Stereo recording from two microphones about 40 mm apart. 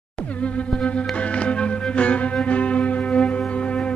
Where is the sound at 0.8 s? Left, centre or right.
Left.